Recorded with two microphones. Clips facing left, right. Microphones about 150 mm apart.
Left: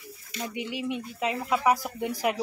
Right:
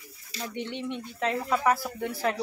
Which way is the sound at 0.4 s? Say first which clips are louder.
Left 1 dB; 10° left (ahead or behind).